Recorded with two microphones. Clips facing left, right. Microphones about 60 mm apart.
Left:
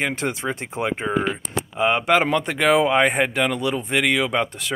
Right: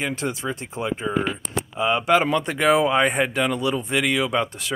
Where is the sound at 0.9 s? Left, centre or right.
Left.